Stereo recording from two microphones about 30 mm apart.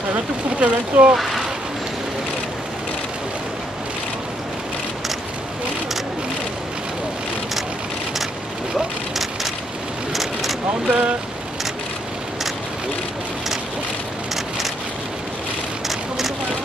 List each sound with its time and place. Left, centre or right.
0.6 s speech: right
8.7 s vehicle: centre
10.9 s speech: right